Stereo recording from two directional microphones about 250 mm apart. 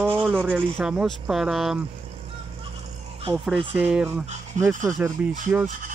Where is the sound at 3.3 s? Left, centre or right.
Centre.